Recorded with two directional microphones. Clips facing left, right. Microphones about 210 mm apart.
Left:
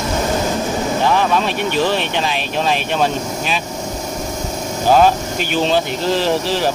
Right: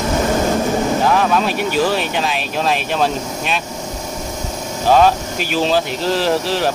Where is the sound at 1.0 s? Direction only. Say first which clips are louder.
Right 1 dB; centre (ahead or behind).